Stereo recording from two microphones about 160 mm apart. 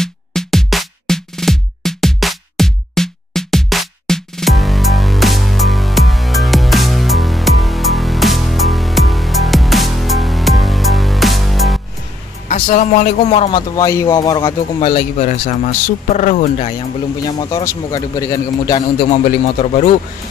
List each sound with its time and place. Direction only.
0.0 s music: 5° left (ahead or behind)
12.4 s speech: 55° left (ahead or behind)
13.6 s speech: 20° left (ahead or behind)
15.1 s speech: 50° left (ahead or behind)
17.4 s speech: 25° left (ahead or behind)
19.2 s speech: 45° left (ahead or behind)